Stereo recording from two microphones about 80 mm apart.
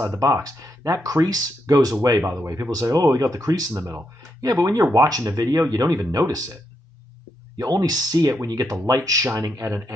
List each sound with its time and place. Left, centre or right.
0.0 s speech: right